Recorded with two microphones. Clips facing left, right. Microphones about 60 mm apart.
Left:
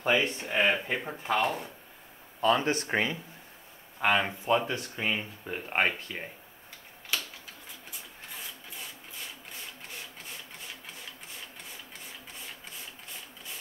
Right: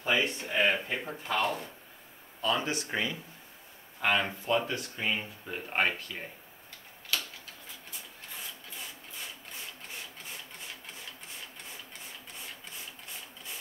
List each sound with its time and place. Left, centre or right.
0.0 s speech: left
2.4 s speech: left
4.0 s speech: centre